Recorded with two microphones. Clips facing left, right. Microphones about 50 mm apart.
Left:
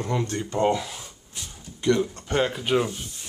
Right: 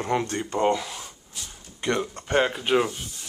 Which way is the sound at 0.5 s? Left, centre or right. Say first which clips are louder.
Even; centre.